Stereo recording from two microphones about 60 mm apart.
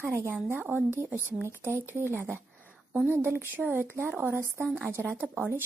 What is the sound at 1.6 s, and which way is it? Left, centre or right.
Speech, right.